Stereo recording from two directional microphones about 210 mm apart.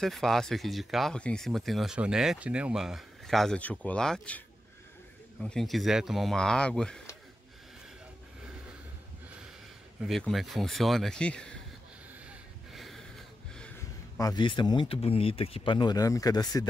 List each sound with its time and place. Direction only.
0.0 s speech: centre (ahead or behind)
5.4 s speech: centre (ahead or behind)
9.9 s speech: centre (ahead or behind)
12.7 s a sound: centre (ahead or behind)
14.1 s speech: 20° left (ahead or behind)